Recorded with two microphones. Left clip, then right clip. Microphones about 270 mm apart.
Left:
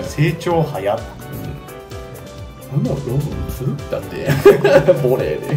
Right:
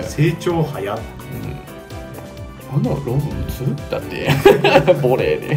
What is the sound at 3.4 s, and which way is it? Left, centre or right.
Speech, centre.